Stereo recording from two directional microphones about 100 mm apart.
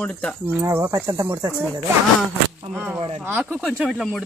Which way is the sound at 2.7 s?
15° right (ahead or behind).